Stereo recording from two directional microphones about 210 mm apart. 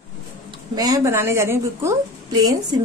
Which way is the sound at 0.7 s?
15° right (ahead or behind).